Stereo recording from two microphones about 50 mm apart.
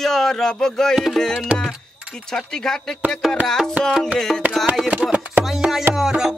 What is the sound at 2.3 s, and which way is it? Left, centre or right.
Speech, centre.